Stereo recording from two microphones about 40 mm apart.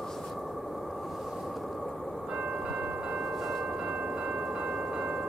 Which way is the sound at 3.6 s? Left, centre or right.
Right.